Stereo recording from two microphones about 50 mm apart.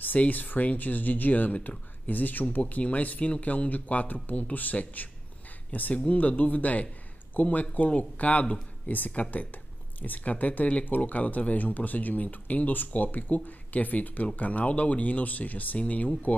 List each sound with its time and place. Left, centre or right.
0.0 s speech: left